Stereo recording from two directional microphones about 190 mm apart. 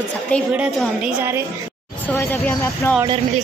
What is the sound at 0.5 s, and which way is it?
Speech, 5° right (ahead or behind).